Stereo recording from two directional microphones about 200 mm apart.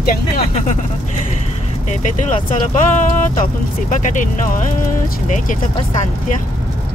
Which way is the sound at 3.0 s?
40° left (ahead or behind).